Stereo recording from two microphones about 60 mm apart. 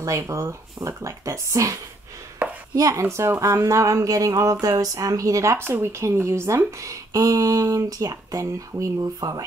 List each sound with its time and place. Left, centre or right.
0.0 s speech: right
5.6 s speech: right
6.8 s speech: right